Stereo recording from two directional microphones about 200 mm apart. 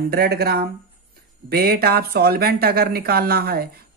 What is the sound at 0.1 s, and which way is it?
Mantra, 50° right (ahead or behind).